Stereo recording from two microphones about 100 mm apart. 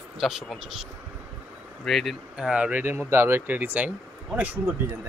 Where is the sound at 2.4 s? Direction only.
10° right (ahead or behind).